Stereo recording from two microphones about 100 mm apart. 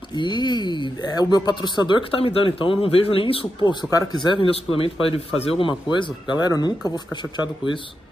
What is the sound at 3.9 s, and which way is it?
Speech, 35° left (ahead or behind).